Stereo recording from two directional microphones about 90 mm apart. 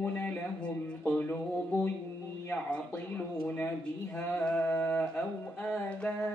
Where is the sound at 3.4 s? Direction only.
20° left (ahead or behind).